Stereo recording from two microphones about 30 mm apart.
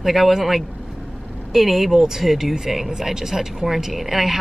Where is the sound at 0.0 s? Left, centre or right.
Centre.